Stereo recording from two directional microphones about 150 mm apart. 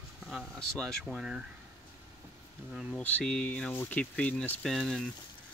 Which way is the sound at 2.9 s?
10° left (ahead or behind).